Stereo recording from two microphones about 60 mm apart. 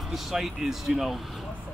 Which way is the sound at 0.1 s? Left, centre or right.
Centre.